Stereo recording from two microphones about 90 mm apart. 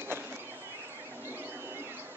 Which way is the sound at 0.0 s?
25° right (ahead or behind).